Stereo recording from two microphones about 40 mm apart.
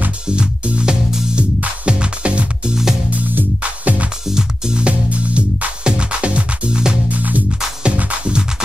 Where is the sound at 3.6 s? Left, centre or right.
Right.